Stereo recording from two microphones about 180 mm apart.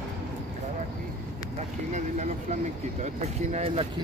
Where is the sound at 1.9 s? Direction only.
40° right (ahead or behind).